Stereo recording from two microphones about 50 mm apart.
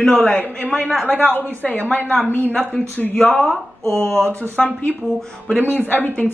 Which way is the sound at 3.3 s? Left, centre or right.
Centre.